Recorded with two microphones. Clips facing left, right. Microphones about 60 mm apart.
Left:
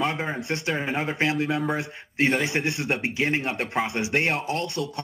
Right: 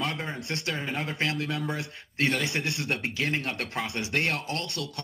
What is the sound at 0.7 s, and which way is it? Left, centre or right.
A man's voice, left.